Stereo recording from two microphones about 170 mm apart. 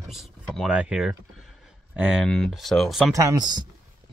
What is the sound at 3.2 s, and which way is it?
Speech, 20° right (ahead or behind).